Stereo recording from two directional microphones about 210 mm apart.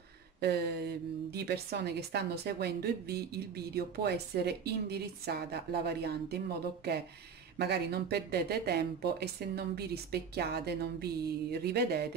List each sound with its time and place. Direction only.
0.4 s a woman's voice: 50° right (ahead or behind)
7.5 s a woman's voice: 50° right (ahead or behind)